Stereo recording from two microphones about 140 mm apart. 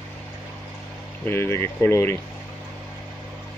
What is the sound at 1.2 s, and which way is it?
Speech, 15° left (ahead or behind).